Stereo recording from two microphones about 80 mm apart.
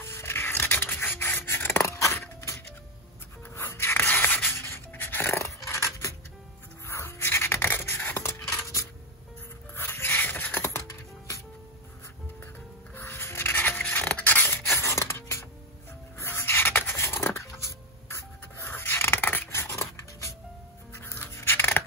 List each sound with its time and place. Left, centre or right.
0.0 s scissors: left
3.5 s music: left
6.9 s a sound: left
8.5 s coin: left
9.8 s dog: left
12.9 s dog: left
17.4 s music: left
20.9 s dog: left